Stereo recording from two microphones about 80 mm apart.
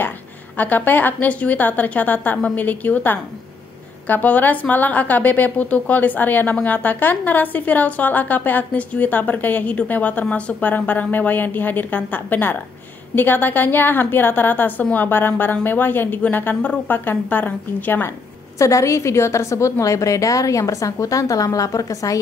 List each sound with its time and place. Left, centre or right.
0.6 s a woman's voice: left
18.6 s a woman's voice: left